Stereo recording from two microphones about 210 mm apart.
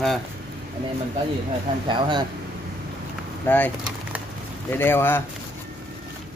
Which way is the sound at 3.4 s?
10° left (ahead or behind).